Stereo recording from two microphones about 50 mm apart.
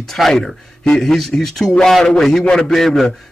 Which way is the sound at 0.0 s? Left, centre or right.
Centre.